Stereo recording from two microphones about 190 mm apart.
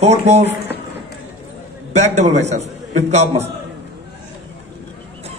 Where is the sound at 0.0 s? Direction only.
35° right (ahead or behind).